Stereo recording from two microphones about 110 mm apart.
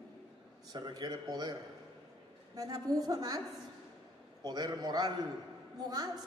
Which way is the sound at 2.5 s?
35° right (ahead or behind).